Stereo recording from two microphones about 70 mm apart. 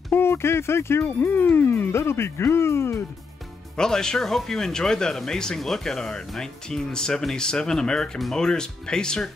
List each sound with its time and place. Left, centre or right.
0.1 s speech: left
3.7 s speech: centre